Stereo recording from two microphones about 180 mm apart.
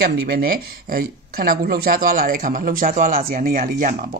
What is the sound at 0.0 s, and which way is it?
Speech, 60° right (ahead or behind).